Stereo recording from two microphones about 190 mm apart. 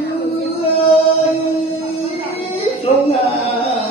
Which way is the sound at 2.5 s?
30° left (ahead or behind).